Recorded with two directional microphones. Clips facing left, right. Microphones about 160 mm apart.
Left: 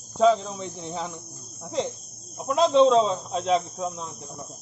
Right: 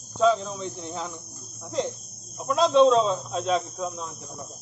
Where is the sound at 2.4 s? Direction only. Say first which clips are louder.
Even; 25° left (ahead or behind).